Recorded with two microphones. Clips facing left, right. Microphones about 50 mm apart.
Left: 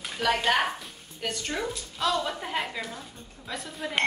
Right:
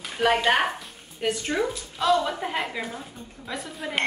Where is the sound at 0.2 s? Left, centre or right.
Right; by 2.8 s centre.